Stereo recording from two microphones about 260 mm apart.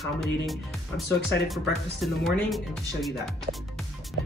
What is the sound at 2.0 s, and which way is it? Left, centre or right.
Speech, centre.